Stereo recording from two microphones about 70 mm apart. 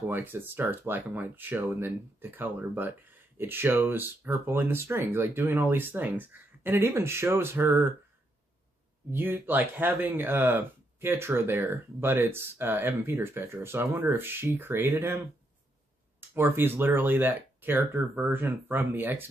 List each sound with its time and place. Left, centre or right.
0.1 s speech: right
9.1 s speech: right